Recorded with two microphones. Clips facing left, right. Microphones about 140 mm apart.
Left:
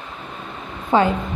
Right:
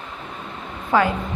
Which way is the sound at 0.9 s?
25° left (ahead or behind).